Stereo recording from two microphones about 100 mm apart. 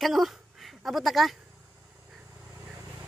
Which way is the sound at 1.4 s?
15° right (ahead or behind).